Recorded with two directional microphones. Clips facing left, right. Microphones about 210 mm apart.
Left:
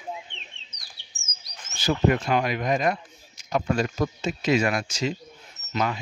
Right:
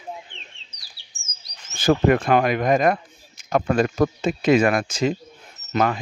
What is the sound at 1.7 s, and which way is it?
Speech, 55° right (ahead or behind).